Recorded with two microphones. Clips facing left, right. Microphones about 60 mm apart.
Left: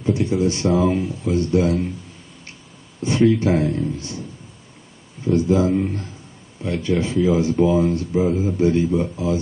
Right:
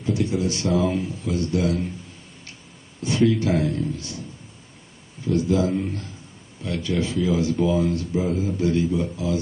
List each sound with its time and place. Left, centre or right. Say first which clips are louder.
0.0 s a sound: left 4 dB; left
0.7 s speech: left 3 dB; left
3.0 s speech: left 3 dB; left
5.2 s speech: left 4 dB; left